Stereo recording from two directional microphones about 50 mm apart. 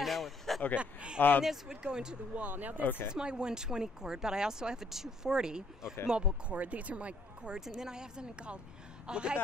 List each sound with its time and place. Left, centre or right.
0.0 s a sound: centre
0.7 s speech: right
1.4 s speech: centre
2.3 s speech: right
2.8 s speech: left
3.1 s speech: centre
7.6 s speech: centre